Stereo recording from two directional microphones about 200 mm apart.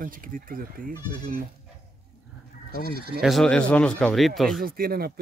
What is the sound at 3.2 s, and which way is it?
Speech, centre (ahead or behind).